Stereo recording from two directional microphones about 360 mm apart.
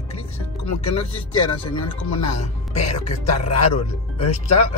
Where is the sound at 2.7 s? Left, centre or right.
Centre.